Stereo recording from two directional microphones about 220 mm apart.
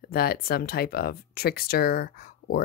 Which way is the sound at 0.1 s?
45° left (ahead or behind).